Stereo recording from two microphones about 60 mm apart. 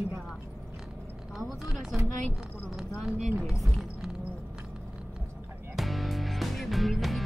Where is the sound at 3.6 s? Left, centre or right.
Centre.